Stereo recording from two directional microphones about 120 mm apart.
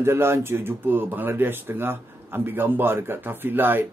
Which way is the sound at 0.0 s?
20° right (ahead or behind).